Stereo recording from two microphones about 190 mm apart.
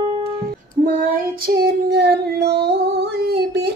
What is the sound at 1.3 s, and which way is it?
Female singing, 50° right (ahead or behind).